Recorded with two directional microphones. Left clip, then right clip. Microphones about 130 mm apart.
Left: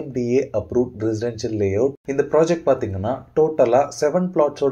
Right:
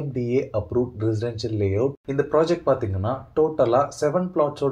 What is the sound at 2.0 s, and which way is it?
Speech, 30° left (ahead or behind).